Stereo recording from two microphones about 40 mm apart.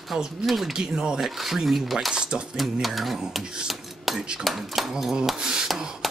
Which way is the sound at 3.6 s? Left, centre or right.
Centre.